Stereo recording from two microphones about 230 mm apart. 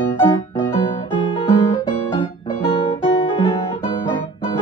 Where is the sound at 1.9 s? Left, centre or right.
Left.